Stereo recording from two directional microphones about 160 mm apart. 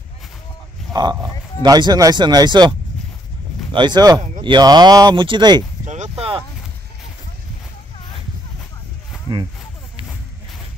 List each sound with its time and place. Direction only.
1.1 s speech: 25° right (ahead or behind)
3.7 s speech: 30° right (ahead or behind)
5.9 s a sound: 45° right (ahead or behind)